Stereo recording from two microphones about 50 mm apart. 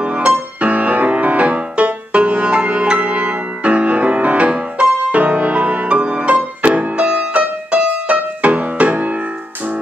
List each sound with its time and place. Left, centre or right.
0.0 s music: right